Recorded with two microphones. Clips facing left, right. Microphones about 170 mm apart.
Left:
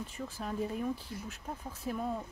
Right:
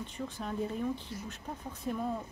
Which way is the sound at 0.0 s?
5° left (ahead or behind).